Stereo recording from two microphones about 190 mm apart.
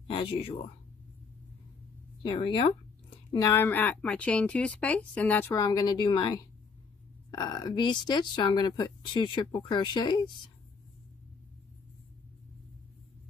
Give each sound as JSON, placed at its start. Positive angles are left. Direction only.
{"t": 0.1, "sound": "speech", "side_deg": 30}
{"t": 2.2, "sound": "speech", "side_deg": 25}